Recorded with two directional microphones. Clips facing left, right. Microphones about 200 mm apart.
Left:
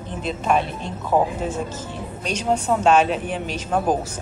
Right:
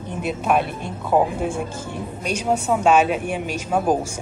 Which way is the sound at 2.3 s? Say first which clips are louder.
Even; 10° right (ahead or behind).